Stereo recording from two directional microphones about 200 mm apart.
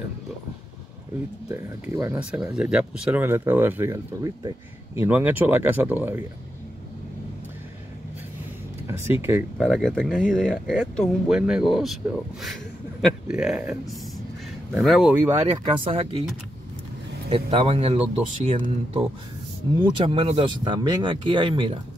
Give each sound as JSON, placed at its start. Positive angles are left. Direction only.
{"t": 1.5, "sound": "speech", "side_deg": -15}
{"t": 8.8, "sound": "speech", "side_deg": -10}
{"t": 9.7, "sound": "speech", "side_deg": 5}
{"t": 14.7, "sound": "speech", "side_deg": 0}
{"t": 15.3, "sound": "speech", "side_deg": -30}
{"t": 17.3, "sound": "speech", "side_deg": -30}